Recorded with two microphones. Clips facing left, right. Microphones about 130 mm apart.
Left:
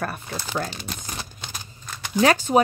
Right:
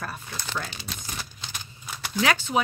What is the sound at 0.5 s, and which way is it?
Speech, 45° left (ahead or behind).